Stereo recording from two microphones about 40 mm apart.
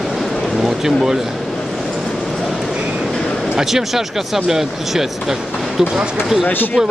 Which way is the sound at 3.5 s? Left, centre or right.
Centre.